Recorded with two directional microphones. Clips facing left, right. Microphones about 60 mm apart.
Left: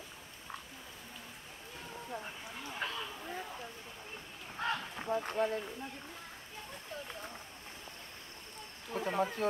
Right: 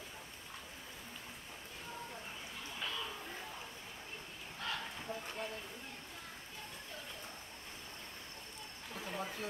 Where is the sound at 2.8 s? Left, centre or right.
Left.